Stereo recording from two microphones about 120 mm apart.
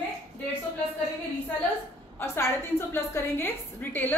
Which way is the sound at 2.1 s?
20° left (ahead or behind).